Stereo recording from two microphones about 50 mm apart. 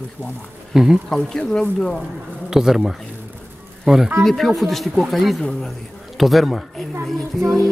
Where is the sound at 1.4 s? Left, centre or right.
Centre.